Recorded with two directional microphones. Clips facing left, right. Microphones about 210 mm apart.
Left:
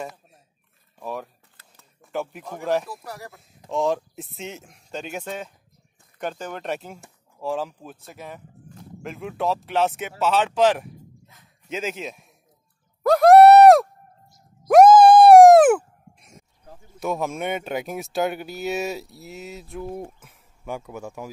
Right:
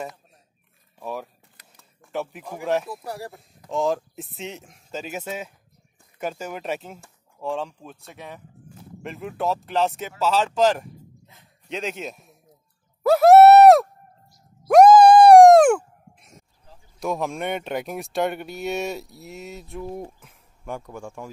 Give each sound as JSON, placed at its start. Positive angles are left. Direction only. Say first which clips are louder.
{"t": 0.9, "sound": "speech", "louder": "even", "side_deg": 0}
{"t": 3.1, "sound": "speech", "louder": "right 4 dB", "side_deg": -30}
{"t": 3.7, "sound": "speech", "louder": "even", "side_deg": 0}
{"t": 13.0, "sound": "a sound", "louder": "even", "side_deg": -5}
{"t": 17.0, "sound": "speech", "louder": "even", "side_deg": 0}